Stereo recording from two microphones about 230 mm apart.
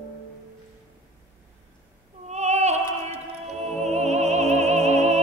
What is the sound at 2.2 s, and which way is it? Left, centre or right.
Opera, right.